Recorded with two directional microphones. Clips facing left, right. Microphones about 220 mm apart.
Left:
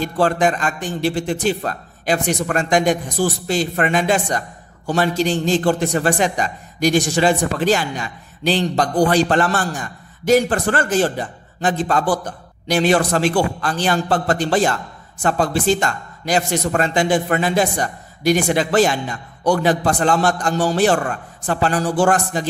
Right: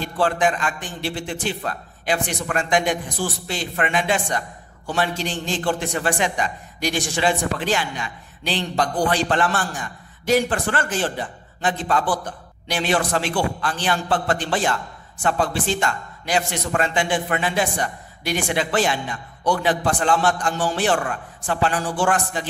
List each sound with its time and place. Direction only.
0.0 s a man's voice: 40° left (ahead or behind)